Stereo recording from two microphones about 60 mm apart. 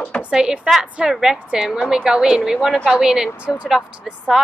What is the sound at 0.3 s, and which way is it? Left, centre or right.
A woman's voice, centre.